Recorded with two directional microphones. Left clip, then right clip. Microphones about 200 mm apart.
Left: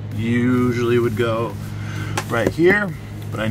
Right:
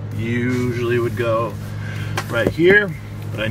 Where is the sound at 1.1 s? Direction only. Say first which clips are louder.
Right 1 dB; 10° left (ahead or behind).